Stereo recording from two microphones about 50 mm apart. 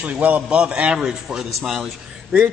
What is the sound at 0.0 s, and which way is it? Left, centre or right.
A man's voice, right.